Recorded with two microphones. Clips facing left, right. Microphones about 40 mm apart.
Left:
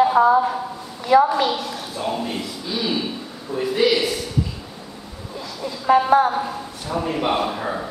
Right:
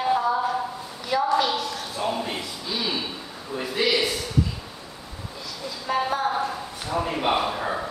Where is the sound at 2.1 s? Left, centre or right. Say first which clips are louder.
Left 4 dB; centre.